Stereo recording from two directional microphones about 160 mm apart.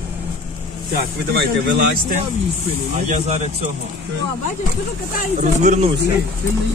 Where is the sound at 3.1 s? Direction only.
40° right (ahead or behind).